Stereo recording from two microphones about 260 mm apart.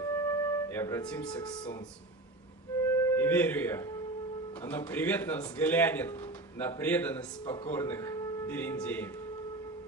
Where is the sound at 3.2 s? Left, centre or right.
Centre.